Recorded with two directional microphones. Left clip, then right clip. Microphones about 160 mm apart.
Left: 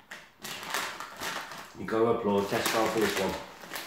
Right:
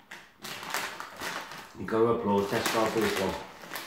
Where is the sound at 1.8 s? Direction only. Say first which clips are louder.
Right 1 dB; centre (ahead or behind).